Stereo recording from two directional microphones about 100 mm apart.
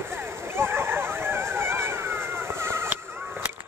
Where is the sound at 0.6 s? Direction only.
25° right (ahead or behind).